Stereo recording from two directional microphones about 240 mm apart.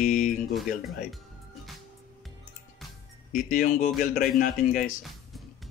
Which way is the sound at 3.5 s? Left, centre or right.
Left.